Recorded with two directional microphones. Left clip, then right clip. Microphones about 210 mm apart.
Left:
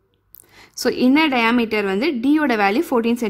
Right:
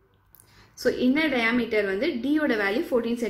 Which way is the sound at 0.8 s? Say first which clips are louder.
Left 6 dB; 50° left (ahead or behind).